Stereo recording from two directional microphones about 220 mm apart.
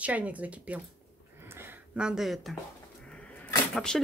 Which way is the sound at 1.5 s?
5° right (ahead or behind).